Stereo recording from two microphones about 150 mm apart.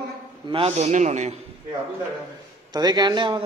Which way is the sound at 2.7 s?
30° right (ahead or behind).